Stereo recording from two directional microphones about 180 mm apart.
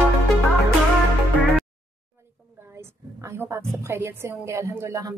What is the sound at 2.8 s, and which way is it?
A woman's voice, 15° right (ahead or behind).